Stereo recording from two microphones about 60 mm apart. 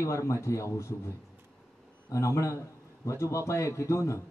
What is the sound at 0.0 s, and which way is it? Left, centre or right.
Speech, left.